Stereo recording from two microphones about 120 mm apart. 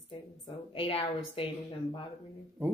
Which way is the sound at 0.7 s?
50° left (ahead or behind).